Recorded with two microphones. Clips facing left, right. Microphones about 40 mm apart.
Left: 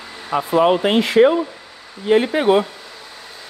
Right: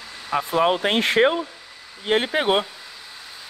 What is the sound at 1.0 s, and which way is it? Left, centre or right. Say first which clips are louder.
Speech: left 6 dB; right.